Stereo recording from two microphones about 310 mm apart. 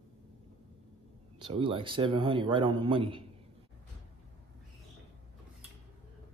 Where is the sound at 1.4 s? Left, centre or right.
Centre.